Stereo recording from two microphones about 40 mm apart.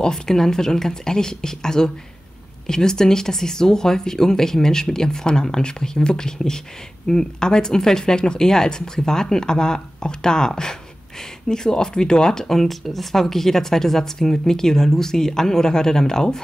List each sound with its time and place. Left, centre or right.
0.0 s speech: centre